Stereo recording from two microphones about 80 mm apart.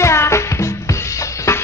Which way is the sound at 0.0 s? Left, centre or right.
Left.